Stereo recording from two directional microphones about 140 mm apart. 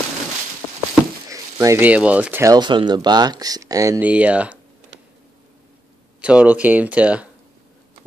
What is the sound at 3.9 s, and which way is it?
Speech, 10° right (ahead or behind).